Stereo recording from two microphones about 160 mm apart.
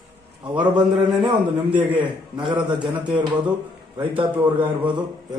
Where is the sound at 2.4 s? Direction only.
30° right (ahead or behind).